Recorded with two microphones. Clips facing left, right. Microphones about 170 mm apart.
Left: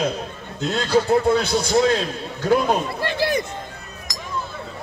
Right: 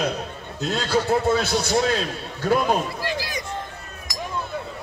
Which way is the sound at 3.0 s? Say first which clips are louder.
Left 7 dB; 60° left (ahead or behind).